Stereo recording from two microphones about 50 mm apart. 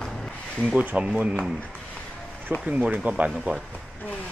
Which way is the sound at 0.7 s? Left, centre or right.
Right.